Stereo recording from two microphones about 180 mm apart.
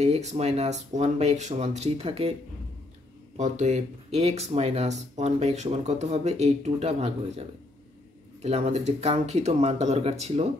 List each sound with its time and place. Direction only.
0.0 s speech: 40° right (ahead or behind)
3.3 s speech: 40° right (ahead or behind)